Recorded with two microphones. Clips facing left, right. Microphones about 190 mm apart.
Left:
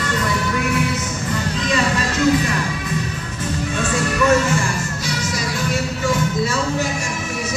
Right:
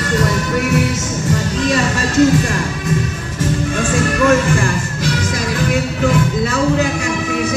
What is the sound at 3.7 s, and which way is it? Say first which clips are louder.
Music: right 2 dB; 50° right (ahead or behind).